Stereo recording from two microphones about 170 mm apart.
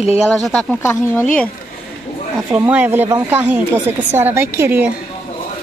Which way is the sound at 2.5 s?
10° right (ahead or behind).